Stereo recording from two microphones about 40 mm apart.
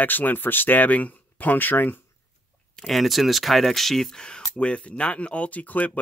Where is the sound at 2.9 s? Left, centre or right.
Centre.